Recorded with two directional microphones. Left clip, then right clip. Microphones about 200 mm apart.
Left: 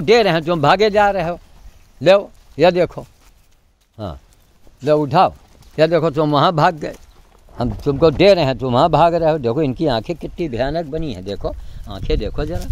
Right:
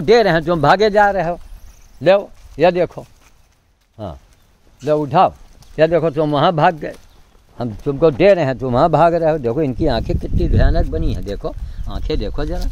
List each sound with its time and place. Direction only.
0.0 s speech: 5° left (ahead or behind)
2.0 s a man's voice: 30° left (ahead or behind)
8.4 s speech: 10° left (ahead or behind)
9.8 s speech: 5° left (ahead or behind)